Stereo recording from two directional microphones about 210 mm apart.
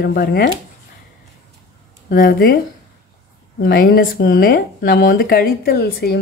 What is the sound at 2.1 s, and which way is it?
Speech, 45° left (ahead or behind).